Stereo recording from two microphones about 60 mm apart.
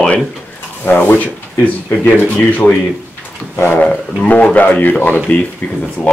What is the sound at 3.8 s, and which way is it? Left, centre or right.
Speech, left.